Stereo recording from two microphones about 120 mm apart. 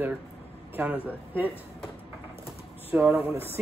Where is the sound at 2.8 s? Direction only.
15° right (ahead or behind).